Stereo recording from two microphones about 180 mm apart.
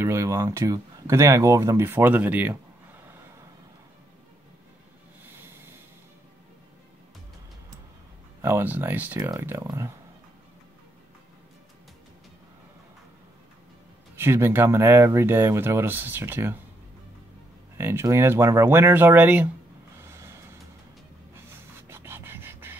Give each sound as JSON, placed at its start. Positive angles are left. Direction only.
{"t": 0.0, "sound": "speech", "side_deg": -15}
{"t": 8.4, "sound": "speech", "side_deg": -15}
{"t": 14.1, "sound": "speech", "side_deg": -10}
{"t": 17.7, "sound": "speech", "side_deg": -15}
{"t": 20.0, "sound": "music", "side_deg": -15}
{"t": 21.8, "sound": "beatboxing", "side_deg": -15}